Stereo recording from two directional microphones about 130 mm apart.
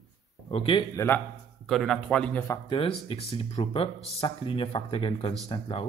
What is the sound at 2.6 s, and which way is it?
Speech, 45° left (ahead or behind).